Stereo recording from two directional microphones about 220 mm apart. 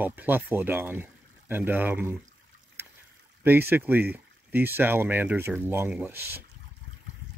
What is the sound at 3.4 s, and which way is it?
Speech, 10° right (ahead or behind).